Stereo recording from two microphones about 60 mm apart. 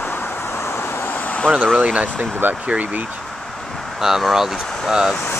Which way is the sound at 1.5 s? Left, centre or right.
Centre.